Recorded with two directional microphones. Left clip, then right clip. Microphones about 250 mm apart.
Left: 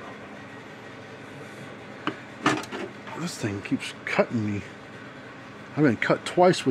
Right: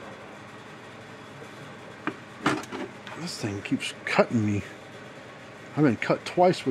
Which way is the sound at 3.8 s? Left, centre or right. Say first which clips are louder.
Right 2 dB; centre.